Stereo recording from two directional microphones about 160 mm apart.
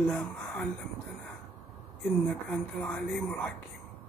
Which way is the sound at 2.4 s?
5° left (ahead or behind).